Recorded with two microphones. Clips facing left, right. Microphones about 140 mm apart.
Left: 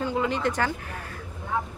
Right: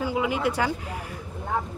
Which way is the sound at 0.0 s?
10° right (ahead or behind).